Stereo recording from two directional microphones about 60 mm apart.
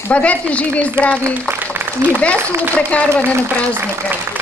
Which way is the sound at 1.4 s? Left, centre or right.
Right.